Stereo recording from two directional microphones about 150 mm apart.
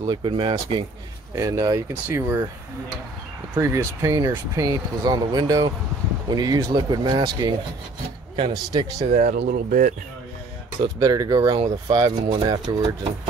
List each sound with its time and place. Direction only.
0.0 s speech: 30° right (ahead or behind)
1.3 s speech: 20° right (ahead or behind)
3.5 s speech: 15° right (ahead or behind)
8.4 s speech: 25° right (ahead or behind)
9.0 s speech: 60° right (ahead or behind)
11.0 s speech: 25° right (ahead or behind)